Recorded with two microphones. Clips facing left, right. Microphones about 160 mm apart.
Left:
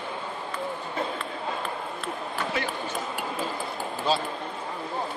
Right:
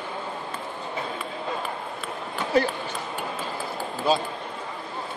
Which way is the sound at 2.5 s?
40° right (ahead or behind).